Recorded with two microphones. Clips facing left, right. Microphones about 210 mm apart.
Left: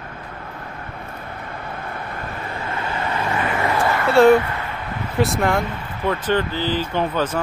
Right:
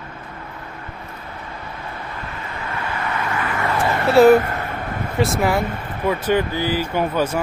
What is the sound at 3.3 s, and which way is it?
Vehicle, 25° left (ahead or behind).